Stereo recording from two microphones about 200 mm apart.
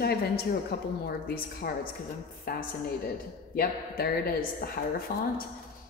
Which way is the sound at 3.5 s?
45° left (ahead or behind).